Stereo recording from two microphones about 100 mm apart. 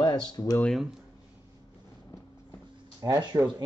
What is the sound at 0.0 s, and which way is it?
Speech, 40° left (ahead or behind).